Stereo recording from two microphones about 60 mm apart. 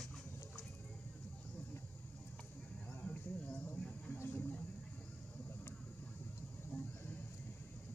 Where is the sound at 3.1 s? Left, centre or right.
Left.